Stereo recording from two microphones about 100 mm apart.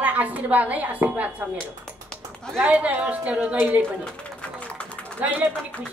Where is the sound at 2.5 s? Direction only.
15° right (ahead or behind).